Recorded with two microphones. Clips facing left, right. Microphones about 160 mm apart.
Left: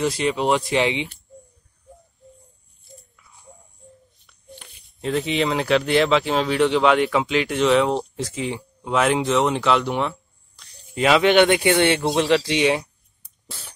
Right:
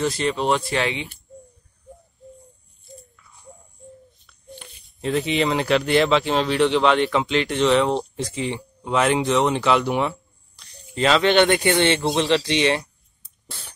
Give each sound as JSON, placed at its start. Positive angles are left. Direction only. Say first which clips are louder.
{"t": 0.0, "sound": "speech", "louder": "left 1 dB", "side_deg": 10}
{"t": 5.0, "sound": "speech", "louder": "right 1 dB", "side_deg": 0}
{"t": 11.0, "sound": "speech", "louder": "left 1 dB", "side_deg": 10}